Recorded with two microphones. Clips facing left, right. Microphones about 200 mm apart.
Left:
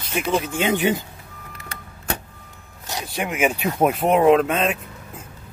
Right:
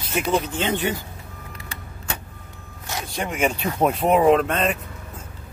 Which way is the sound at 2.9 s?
15° left (ahead or behind).